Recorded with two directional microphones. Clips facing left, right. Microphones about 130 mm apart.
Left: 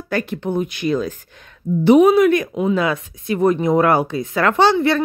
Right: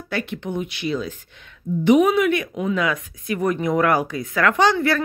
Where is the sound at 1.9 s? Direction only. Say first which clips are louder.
Left 5 dB; 35° left (ahead or behind).